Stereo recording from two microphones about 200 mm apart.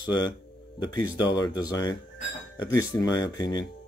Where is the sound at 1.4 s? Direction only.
20° left (ahead or behind).